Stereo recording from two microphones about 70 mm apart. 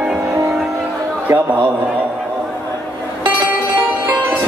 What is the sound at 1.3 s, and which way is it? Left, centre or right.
Speech, right.